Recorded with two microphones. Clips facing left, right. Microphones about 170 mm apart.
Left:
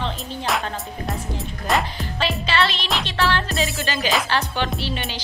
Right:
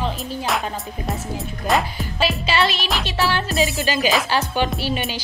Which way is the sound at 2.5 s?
10° right (ahead or behind).